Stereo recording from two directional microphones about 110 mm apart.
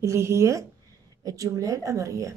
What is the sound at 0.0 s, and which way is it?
A woman's voice, 25° right (ahead or behind).